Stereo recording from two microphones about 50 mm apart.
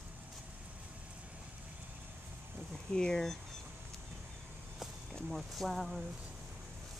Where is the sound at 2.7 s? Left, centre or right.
Centre.